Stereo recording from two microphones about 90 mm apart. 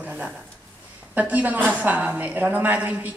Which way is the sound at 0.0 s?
15° right (ahead or behind).